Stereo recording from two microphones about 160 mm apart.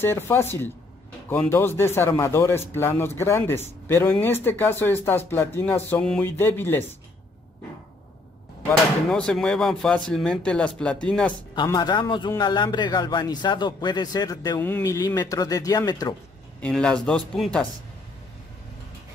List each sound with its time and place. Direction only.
0.0 s speech: 15° left (ahead or behind)
8.6 s speech: 5° left (ahead or behind)
11.5 s a man's voice: 25° left (ahead or behind)
16.6 s speech: 5° left (ahead or behind)